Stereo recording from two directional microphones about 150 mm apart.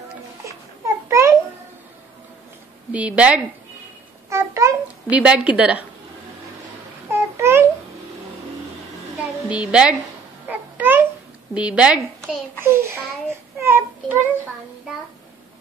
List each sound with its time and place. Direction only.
1.0 s babbling: 20° right (ahead or behind)
2.9 s a woman's voice: 10° right (ahead or behind)
4.3 s babbling: 20° right (ahead or behind)
5.1 s a woman's voice: 10° right (ahead or behind)
7.1 s babbling: 15° right (ahead or behind)
9.5 s a woman's voice: 5° right (ahead or behind)
10.5 s babbling: 10° right (ahead or behind)
11.5 s a woman's voice: 5° right (ahead or behind)
12.5 s a woman's voice: 15° right (ahead or behind)
13.6 s a sound: 15° right (ahead or behind)